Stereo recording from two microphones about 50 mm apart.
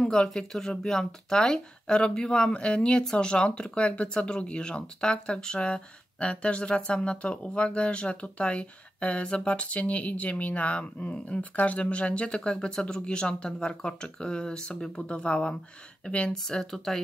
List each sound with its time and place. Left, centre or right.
0.0 s speech: centre